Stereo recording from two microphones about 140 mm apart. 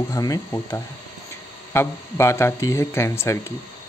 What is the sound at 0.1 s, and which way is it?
A man's voice, 25° left (ahead or behind).